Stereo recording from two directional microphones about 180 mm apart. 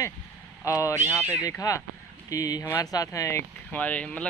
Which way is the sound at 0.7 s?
15° left (ahead or behind).